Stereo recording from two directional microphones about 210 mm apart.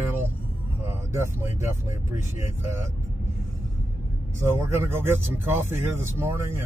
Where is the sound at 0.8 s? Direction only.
10° right (ahead or behind).